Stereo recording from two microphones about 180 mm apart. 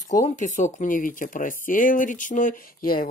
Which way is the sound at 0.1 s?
45° left (ahead or behind).